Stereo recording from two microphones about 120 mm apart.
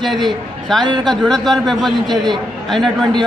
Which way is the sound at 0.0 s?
Centre (ahead or behind).